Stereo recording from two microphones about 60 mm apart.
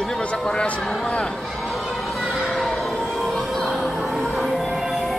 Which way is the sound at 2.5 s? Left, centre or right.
Centre.